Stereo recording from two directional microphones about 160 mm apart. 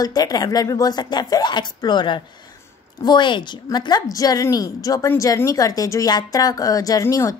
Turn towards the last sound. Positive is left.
turn(degrees=20)  # may be behind; listen again after turning